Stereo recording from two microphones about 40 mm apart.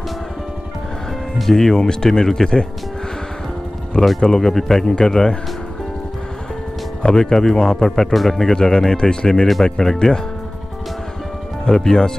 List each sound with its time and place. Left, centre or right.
1.4 s speech: centre
4.2 s speech: centre
7.0 s speech: centre
11.6 s speech: centre